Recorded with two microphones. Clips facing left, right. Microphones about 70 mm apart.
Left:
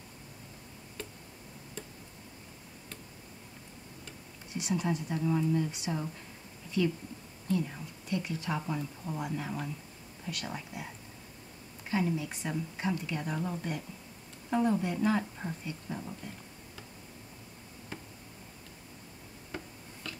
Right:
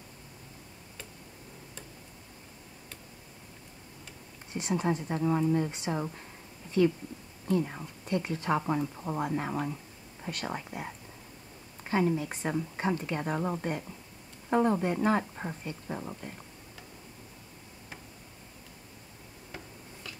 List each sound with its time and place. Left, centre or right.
4.6 s speech: right
7.4 s speech: right
15.4 s speech: right